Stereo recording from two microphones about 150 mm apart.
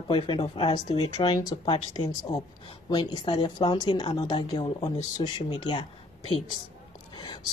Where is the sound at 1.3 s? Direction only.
25° left (ahead or behind).